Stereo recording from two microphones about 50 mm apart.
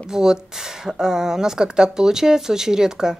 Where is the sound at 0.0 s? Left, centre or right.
Centre.